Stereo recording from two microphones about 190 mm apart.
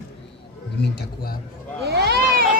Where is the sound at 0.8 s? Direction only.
55° left (ahead or behind).